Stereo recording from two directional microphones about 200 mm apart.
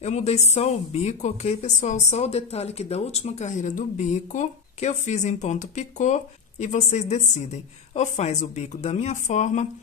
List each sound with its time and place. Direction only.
0.0 s a woman's voice: 35° left (ahead or behind)